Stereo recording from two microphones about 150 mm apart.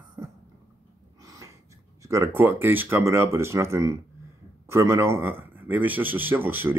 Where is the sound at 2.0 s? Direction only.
20° right (ahead or behind).